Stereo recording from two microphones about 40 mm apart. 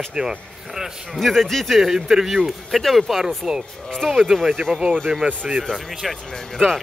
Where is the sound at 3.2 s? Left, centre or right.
Centre.